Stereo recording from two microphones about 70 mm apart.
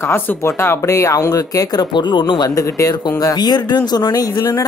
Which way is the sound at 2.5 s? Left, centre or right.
Left.